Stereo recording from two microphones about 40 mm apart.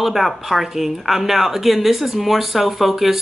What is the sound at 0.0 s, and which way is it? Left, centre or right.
A woman's voice, centre.